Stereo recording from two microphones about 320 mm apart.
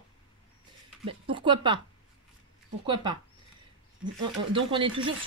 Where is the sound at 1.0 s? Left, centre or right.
Centre.